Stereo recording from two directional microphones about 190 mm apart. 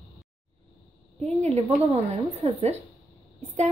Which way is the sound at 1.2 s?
35° right (ahead or behind).